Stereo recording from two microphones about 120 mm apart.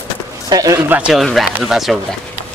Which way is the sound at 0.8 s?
10° right (ahead or behind).